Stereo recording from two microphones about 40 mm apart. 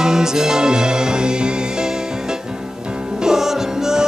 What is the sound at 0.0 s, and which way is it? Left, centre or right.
Music, centre.